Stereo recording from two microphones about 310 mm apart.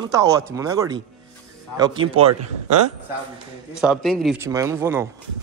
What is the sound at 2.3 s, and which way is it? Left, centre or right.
Speech, right.